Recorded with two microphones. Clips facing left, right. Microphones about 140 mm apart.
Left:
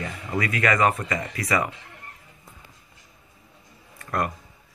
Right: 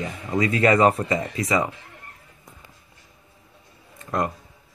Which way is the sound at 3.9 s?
20° right (ahead or behind).